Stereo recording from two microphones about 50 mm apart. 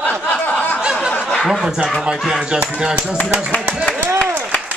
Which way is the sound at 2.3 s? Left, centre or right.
Centre.